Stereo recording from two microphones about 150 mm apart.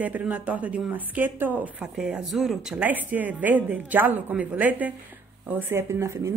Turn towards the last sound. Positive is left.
turn(degrees=-20)  # may be behind; listen again after turning